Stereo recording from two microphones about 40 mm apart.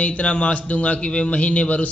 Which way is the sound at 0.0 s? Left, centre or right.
Left.